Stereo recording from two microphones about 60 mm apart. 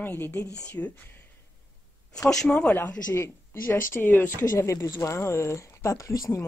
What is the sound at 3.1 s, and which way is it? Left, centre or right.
A woman's voice, left.